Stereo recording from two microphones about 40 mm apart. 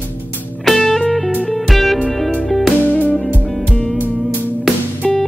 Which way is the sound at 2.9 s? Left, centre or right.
Left.